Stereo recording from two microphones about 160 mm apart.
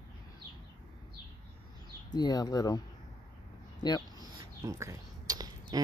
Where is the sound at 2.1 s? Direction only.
25° left (ahead or behind).